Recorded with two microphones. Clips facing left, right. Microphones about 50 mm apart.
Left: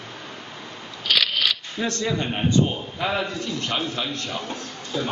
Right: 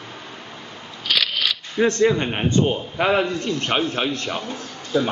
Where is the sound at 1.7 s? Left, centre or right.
Right.